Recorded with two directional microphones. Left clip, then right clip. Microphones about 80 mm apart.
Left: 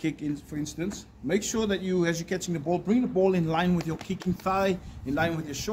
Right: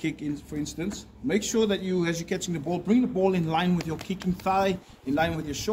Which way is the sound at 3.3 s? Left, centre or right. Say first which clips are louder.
Even; left.